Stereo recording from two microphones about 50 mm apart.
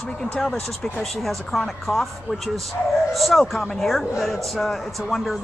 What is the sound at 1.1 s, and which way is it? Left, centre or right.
A man's voice, centre.